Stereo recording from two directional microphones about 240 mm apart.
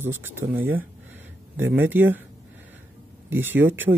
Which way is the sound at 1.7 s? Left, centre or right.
Centre.